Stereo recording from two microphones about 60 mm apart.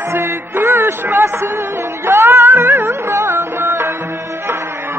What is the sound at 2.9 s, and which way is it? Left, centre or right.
Music, right.